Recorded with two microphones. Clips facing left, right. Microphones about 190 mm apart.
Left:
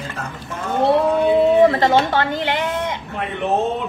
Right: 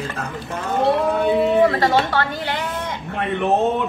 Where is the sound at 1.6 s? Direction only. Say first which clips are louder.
Left 2 dB; 20° left (ahead or behind).